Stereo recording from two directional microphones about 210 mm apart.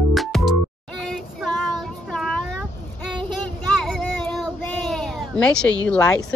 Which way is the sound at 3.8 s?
Centre (ahead or behind).